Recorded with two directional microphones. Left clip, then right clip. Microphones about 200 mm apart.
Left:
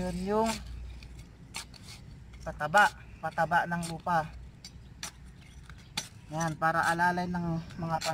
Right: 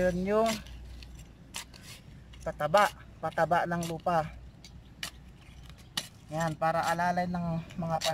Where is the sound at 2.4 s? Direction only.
40° right (ahead or behind).